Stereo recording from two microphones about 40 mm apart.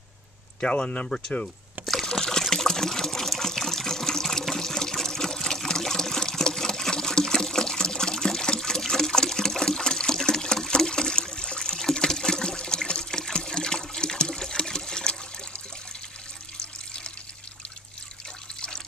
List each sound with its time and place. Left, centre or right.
0.6 s speech: left
1.0 s speech: centre
2.0 s water: centre